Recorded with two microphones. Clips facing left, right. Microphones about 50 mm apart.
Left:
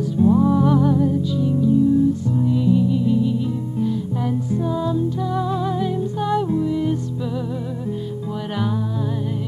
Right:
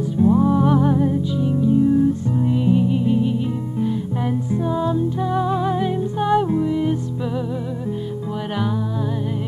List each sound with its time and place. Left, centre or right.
0.2 s music: centre; by 3.3 s right
3.8 s music: right